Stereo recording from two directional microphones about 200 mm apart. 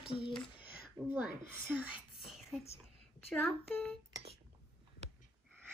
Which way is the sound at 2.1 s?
Centre (ahead or behind).